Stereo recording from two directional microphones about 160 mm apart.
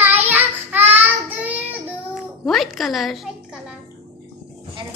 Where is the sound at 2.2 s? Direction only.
Centre (ahead or behind).